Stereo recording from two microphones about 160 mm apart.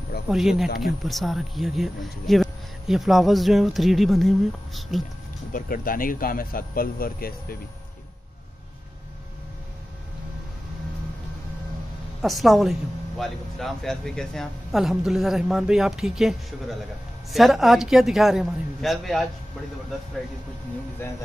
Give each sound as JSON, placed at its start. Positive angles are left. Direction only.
{"t": 0.3, "sound": "speech", "side_deg": 0}
{"t": 5.5, "sound": "speech", "side_deg": 60}
{"t": 12.2, "sound": "speech", "side_deg": 0}